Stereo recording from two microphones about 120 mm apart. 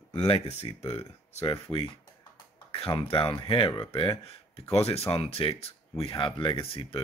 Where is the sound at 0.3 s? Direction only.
60° left (ahead or behind).